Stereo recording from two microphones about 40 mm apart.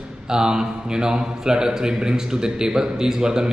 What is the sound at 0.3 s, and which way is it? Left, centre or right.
A man's voice, centre.